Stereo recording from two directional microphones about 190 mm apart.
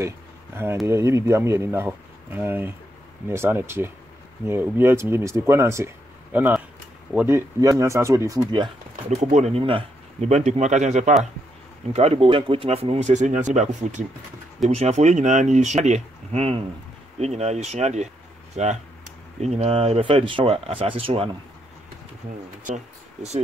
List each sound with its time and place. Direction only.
0.8 s speech: 15° right (ahead or behind)
9.2 s speech: 40° right (ahead or behind)